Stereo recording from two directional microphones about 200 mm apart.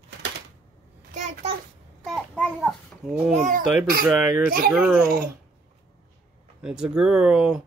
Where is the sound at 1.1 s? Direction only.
40° right (ahead or behind).